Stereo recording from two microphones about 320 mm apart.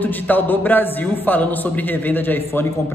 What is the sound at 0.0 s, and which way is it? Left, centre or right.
A man's voice, centre.